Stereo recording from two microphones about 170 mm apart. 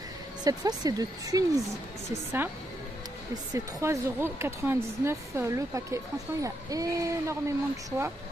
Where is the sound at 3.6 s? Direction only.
15° right (ahead or behind).